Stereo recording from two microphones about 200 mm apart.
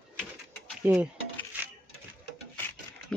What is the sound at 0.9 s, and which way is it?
Speech, 10° right (ahead or behind).